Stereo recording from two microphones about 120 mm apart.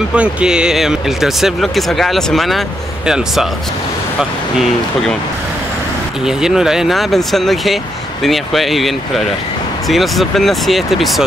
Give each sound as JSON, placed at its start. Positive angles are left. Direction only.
{"t": 0.1, "sound": "speech", "side_deg": -10}
{"t": 4.2, "sound": "speech", "side_deg": -5}
{"t": 6.2, "sound": "speech", "side_deg": -5}